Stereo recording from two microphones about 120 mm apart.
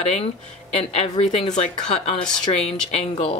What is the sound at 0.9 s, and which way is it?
Speech, 60° left (ahead or behind).